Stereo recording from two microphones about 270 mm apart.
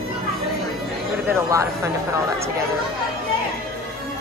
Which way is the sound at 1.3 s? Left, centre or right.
Centre.